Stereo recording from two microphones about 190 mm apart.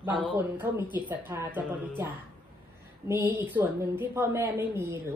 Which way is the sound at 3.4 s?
10° right (ahead or behind).